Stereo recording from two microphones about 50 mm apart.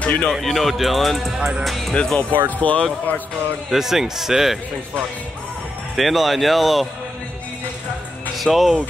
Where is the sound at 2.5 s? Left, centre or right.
Left.